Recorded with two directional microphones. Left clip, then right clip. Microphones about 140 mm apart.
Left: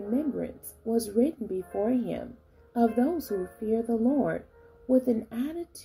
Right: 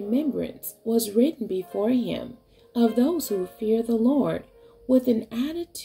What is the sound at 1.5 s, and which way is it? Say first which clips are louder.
Speech: right 4 dB; 20° right (ahead or behind).